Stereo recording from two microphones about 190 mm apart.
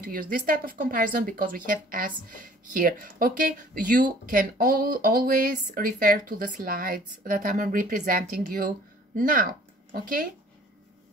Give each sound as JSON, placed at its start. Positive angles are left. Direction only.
{"t": 0.0, "sound": "speech", "side_deg": -50}